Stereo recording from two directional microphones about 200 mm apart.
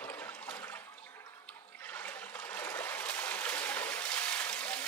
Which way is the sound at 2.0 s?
10° left (ahead or behind).